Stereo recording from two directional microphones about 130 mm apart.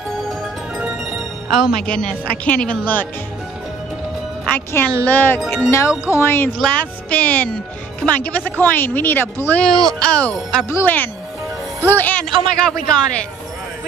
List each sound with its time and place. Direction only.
0.3 s music: 5° right (ahead or behind)
1.9 s speech: 10° left (ahead or behind)
4.5 s speech: 15° left (ahead or behind)
10.7 s speech: 15° left (ahead or behind)